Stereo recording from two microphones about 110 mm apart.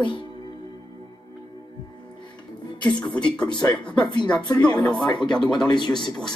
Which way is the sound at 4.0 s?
45° left (ahead or behind).